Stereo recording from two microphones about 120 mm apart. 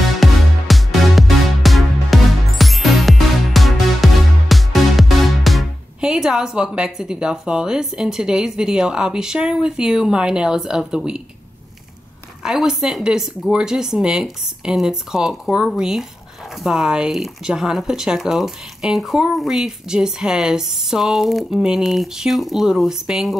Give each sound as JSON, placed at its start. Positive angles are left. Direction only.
{"t": 0.2, "sound": "music", "side_deg": 0}
{"t": 12.4, "sound": "speech", "side_deg": -5}